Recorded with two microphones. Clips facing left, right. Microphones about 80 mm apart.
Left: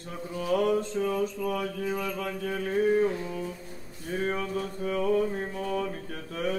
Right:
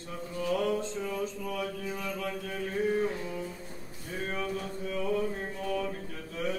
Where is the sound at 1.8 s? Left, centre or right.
Left.